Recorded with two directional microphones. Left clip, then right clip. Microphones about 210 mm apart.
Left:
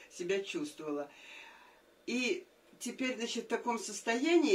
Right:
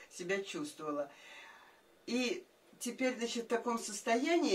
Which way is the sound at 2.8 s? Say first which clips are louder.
Right 1 dB; 20° right (ahead or behind).